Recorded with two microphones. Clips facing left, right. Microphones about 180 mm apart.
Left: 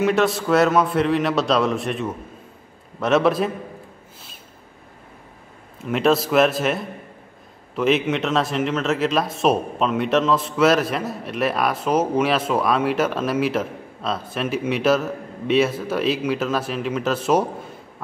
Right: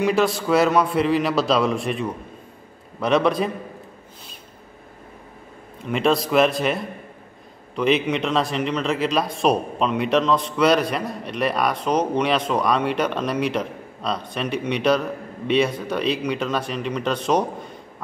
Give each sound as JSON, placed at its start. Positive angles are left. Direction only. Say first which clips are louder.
{"t": 0.0, "sound": "speech", "louder": "left 1 dB", "side_deg": 0}
{"t": 5.9, "sound": "speech", "louder": "left 2 dB", "side_deg": 0}